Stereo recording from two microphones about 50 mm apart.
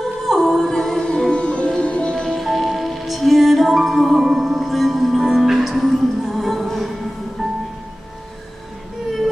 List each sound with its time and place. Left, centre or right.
0.3 s music: centre; by 2.1 s left
2.2 s music: centre